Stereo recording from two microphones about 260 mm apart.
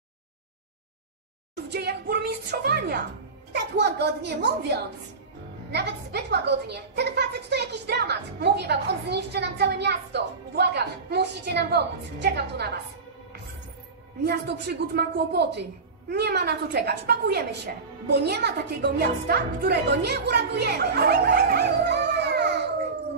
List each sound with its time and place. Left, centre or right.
1.7 s a woman's voice: right
5.7 s a woman's voice: right
14.2 s a woman's voice: right